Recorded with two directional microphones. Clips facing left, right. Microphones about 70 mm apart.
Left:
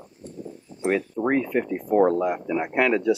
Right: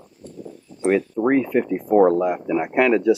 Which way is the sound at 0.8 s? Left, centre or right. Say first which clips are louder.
Right 5 dB; right.